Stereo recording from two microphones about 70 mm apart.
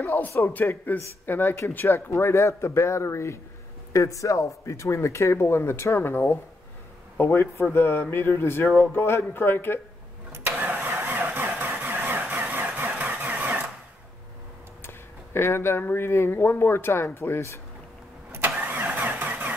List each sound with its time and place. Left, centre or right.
0.0 s speech: left
10.5 s vehicle: right
14.8 s speech: left
18.7 s vehicle: right